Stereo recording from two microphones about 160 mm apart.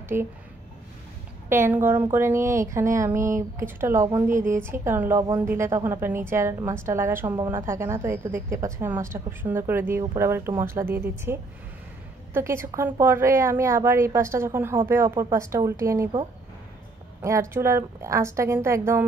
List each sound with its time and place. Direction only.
0.1 s a woman's voice: 10° right (ahead or behind)
1.5 s a woman's voice: 15° right (ahead or behind)
12.4 s a woman's voice: 15° right (ahead or behind)
17.2 s a woman's voice: 20° right (ahead or behind)